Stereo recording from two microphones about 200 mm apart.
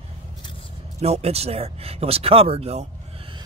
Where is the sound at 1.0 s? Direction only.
30° right (ahead or behind).